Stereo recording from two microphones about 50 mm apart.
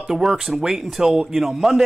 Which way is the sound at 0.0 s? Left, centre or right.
Centre.